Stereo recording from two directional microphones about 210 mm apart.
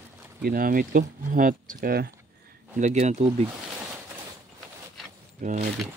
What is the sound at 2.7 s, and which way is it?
Speech, 35° right (ahead or behind).